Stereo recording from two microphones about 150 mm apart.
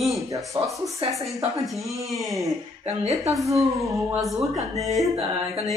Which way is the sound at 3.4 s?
20° right (ahead or behind).